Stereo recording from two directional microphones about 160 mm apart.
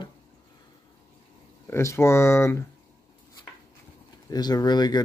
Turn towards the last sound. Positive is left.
turn(degrees=25)  # may be behind; listen again after turning